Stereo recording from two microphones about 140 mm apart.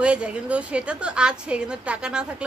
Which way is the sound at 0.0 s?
10° right (ahead or behind).